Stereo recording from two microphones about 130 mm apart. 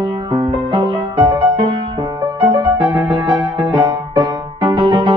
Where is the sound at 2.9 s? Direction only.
35° right (ahead or behind).